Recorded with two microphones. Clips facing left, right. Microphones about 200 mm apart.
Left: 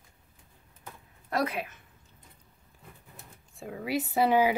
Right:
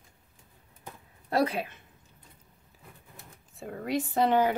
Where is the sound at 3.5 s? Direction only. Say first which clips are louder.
Right 1 dB; centre (ahead or behind).